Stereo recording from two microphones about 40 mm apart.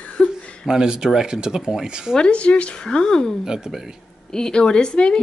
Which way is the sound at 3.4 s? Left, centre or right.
Centre.